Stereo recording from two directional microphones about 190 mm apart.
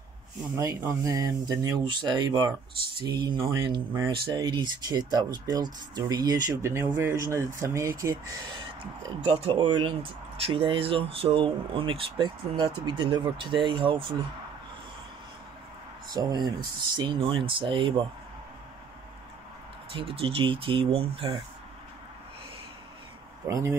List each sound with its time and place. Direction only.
0.6 s speech: 15° right (ahead or behind)
9.2 s speech: 25° right (ahead or behind)
16.1 s speech: 20° right (ahead or behind)
19.9 s speech: 30° right (ahead or behind)
23.4 s speech: 15° right (ahead or behind)